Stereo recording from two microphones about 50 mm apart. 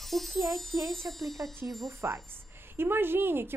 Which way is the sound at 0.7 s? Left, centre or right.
Right.